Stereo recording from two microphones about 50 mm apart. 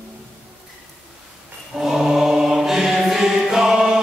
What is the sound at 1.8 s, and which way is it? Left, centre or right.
Mantra, centre.